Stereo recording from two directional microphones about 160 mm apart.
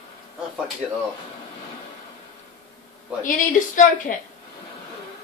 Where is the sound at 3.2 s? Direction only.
55° left (ahead or behind).